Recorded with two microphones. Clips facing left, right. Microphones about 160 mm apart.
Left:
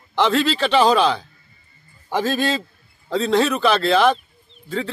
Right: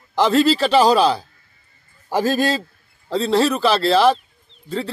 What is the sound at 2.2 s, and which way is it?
A man's voice, 40° right (ahead or behind).